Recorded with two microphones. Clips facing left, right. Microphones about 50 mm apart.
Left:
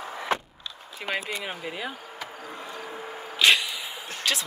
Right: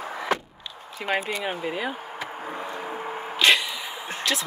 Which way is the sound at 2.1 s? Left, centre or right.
Right.